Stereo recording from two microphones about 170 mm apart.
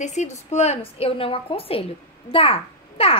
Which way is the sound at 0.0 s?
45° left (ahead or behind).